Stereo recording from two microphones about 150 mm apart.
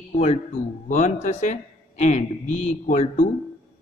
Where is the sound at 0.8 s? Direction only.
55° left (ahead or behind).